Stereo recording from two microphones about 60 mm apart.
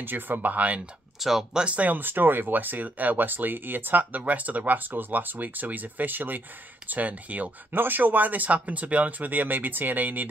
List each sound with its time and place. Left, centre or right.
0.0 s speech: right
1.2 s speech: centre
1.6 s speech: right